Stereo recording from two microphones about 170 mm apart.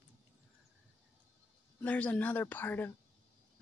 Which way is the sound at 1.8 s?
10° left (ahead or behind).